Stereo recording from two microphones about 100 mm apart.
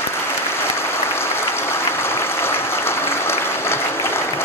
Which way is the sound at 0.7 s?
25° left (ahead or behind).